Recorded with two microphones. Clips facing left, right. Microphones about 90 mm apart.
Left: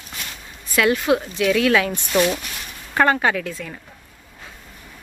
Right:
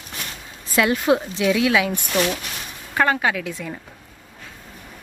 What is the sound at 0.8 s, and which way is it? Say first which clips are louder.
Speech: even; 20° right (ahead or behind).